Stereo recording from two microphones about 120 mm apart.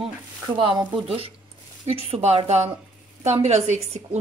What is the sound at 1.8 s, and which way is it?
A woman's voice, 55° right (ahead or behind).